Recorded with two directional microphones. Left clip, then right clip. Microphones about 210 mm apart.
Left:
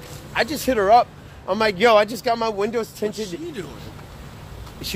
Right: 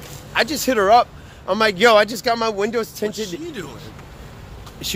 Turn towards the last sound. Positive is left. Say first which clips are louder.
# right 3 dB
turn(degrees=-10)  # may be behind; listen again after turning